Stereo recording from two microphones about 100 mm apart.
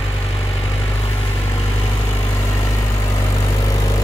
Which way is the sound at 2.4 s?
35° left (ahead or behind).